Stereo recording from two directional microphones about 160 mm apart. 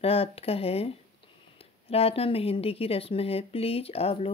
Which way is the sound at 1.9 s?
35° left (ahead or behind).